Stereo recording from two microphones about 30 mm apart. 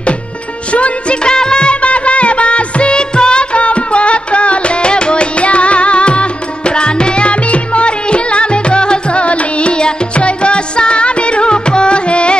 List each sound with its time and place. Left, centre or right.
0.7 s music of bollywood: left
1.2 s music: left
1.8 s music: left
9.2 s music: left